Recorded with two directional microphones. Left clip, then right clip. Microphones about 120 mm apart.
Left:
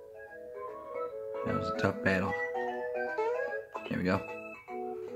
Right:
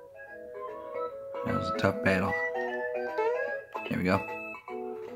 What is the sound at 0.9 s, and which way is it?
Music, 20° right (ahead or behind).